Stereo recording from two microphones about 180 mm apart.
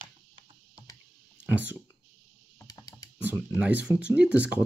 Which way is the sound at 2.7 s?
20° left (ahead or behind).